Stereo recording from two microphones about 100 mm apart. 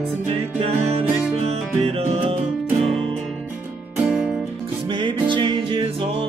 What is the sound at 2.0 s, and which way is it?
Music, 75° right (ahead or behind).